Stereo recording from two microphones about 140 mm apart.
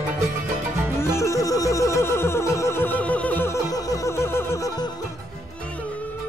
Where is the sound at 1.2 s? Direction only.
25° left (ahead or behind).